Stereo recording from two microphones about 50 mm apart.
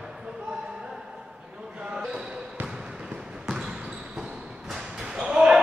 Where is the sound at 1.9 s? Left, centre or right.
Centre.